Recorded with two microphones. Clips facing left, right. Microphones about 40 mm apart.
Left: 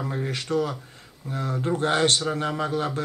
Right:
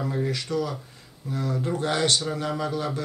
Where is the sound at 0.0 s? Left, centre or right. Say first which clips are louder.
Right 2 dB; centre.